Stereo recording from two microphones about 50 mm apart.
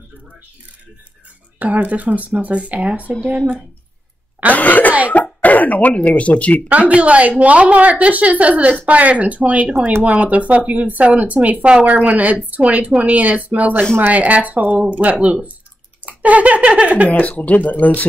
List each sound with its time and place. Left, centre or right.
1.6 s a woman's voice: right
4.5 s cough: left
5.1 s speech: left
6.7 s a woman's voice: right
17.1 s speech: left